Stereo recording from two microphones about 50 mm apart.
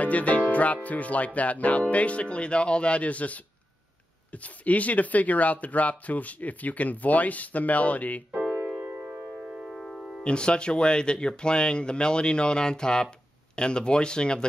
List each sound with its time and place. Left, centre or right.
0.0 s music: left
0.8 s speech: left
8.3 s keyboard: right
8.8 s music: right
9.5 s music: centre
9.8 s music: centre
10.2 s speech: centre